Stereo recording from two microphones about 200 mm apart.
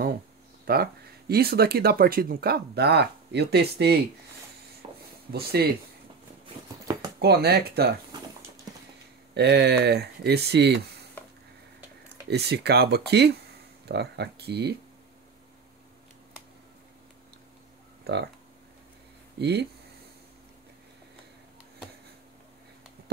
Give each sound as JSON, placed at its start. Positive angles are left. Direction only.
{"t": 0.7, "sound": "speech", "side_deg": -50}
{"t": 5.3, "sound": "speech", "side_deg": -50}
{"t": 7.2, "sound": "speech", "side_deg": -55}
{"t": 9.3, "sound": "speech", "side_deg": -60}
{"t": 12.3, "sound": "speech", "side_deg": -55}
{"t": 18.1, "sound": "speech", "side_deg": -55}
{"t": 19.3, "sound": "speech", "side_deg": -55}